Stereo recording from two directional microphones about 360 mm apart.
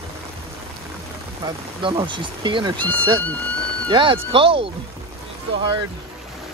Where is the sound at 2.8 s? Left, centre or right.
Centre.